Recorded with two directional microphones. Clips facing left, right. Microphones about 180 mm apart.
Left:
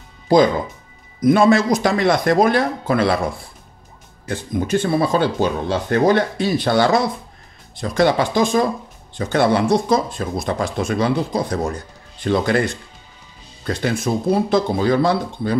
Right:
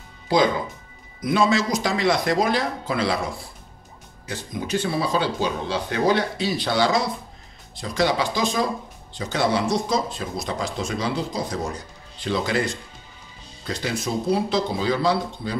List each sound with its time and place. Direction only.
1.2 s speech: 55° left (ahead or behind)
4.3 s speech: 50° left (ahead or behind)